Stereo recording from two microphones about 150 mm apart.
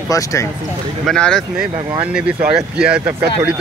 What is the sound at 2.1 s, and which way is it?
Speech, 5° right (ahead or behind).